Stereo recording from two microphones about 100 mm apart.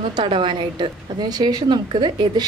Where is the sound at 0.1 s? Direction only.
55° right (ahead or behind).